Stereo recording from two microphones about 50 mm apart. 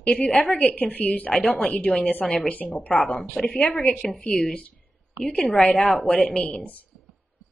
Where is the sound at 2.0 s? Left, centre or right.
Left.